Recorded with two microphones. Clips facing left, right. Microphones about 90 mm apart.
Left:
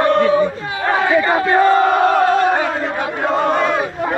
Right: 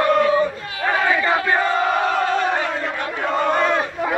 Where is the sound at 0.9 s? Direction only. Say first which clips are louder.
Left 4 dB; 20° left (ahead or behind).